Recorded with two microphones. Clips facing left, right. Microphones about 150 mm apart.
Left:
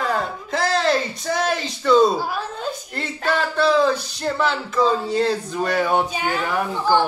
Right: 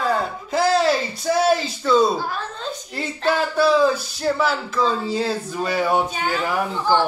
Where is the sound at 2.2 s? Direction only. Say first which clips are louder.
Left 2 dB; 10° left (ahead or behind).